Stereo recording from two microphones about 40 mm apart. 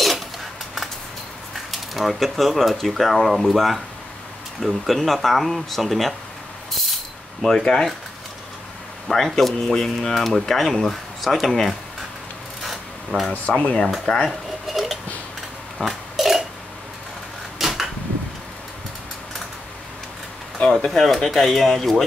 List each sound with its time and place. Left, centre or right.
1.5 s speech: centre
7.4 s speech: centre
9.0 s speech: centre
12.6 s rub: centre
13.5 s speech: left
14.0 s speech: centre
14.3 s dishes: centre
15.8 s burping: centre
17.6 s a sound: centre
20.5 s a sound: centre
20.9 s speech: centre